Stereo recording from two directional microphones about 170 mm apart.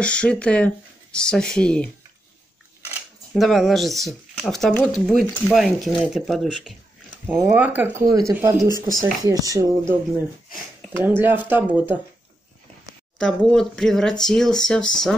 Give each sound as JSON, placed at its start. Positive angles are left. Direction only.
{"t": 0.0, "sound": "speech", "side_deg": 5}
{"t": 3.3, "sound": "speech", "side_deg": 0}
{"t": 7.2, "sound": "speech", "side_deg": -10}
{"t": 8.6, "sound": "speech", "side_deg": 25}
{"t": 9.0, "sound": "speech", "side_deg": -20}
{"t": 11.1, "sound": "speech", "side_deg": -10}
{"t": 13.2, "sound": "speech", "side_deg": 5}